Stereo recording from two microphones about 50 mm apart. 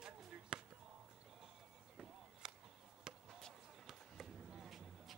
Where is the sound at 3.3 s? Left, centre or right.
Centre.